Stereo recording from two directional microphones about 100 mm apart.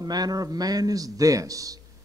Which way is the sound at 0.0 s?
40° right (ahead or behind).